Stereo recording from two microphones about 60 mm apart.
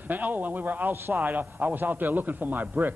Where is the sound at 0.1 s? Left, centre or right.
Right.